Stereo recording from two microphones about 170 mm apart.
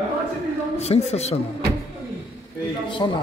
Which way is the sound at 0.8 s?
40° left (ahead or behind).